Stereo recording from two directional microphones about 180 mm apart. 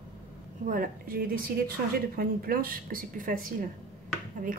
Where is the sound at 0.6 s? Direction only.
50° right (ahead or behind).